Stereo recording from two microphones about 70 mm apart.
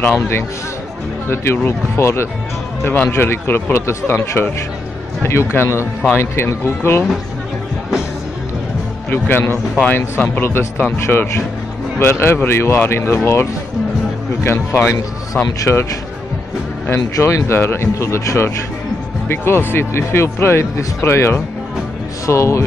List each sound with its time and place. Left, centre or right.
0.0 s speech: left
2.8 s speech: left
9.1 s speech: left
10.4 s speech: left
17.5 s speech: left